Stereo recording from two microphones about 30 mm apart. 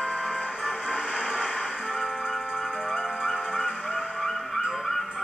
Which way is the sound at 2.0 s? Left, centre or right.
Centre.